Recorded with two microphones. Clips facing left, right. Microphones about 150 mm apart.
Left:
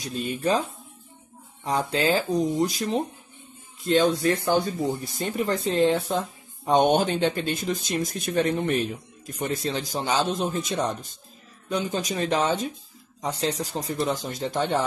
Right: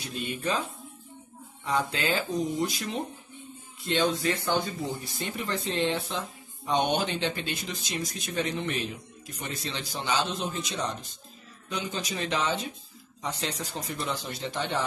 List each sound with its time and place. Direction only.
0.0 s speech: 40° left (ahead or behind)